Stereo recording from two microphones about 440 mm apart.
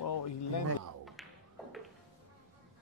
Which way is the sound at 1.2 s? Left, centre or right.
Centre.